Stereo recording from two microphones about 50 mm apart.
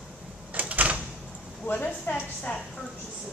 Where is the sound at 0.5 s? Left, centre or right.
Right.